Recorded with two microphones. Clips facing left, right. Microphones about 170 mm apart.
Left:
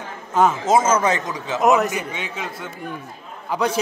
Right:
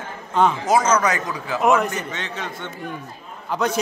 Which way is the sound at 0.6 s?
25° left (ahead or behind).